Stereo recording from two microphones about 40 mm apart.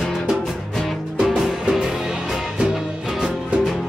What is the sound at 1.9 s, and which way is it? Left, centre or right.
Music, centre.